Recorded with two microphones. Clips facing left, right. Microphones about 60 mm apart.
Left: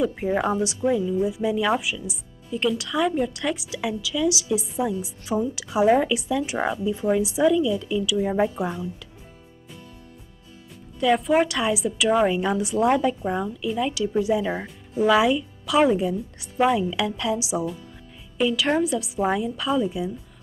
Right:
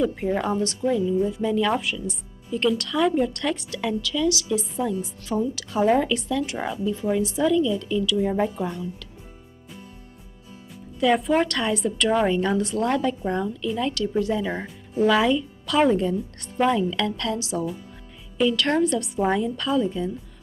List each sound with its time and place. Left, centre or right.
0.0 s a woman's voice: centre
11.0 s a woman's voice: centre